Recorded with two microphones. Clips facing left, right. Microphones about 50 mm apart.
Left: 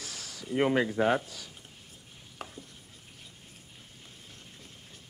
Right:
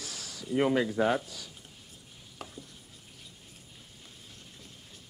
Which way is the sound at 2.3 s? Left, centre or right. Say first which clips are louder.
Left 1 dB; left.